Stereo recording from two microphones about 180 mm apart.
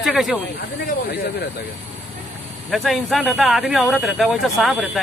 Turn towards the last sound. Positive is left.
turn(degrees=0)  # may be behind; listen again after turning